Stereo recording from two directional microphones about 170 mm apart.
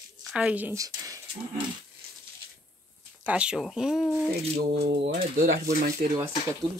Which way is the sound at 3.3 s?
5° right (ahead or behind).